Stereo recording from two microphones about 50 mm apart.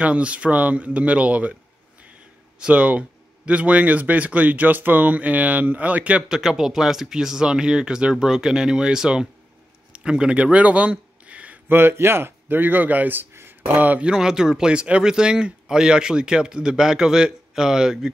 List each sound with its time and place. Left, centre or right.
0.0 s speech: right
2.6 s speech: right
6.2 s speech: centre
9.9 s a sound: centre
11.7 s a man's voice: right
13.7 s speech: right
14.0 s speech: centre